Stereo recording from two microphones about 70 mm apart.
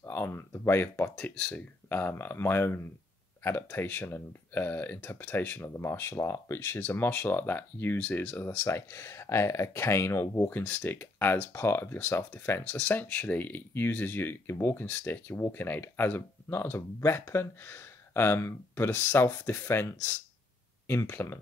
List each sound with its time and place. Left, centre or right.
0.0 s speech: left
10.5 s speech: left
12.6 s speech: left